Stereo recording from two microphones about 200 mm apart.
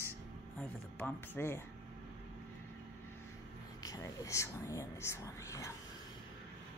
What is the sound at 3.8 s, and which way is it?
Speech, 15° left (ahead or behind).